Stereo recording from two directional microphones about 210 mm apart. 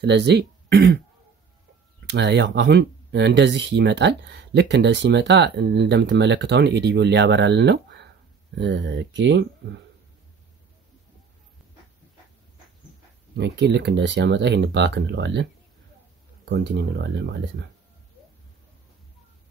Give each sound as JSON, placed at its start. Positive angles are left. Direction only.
{"t": 0.0, "sound": "speech", "side_deg": -55}
{"t": 2.0, "sound": "speech", "side_deg": -55}
{"t": 13.4, "sound": "speech", "side_deg": -55}
{"t": 16.4, "sound": "speech", "side_deg": -55}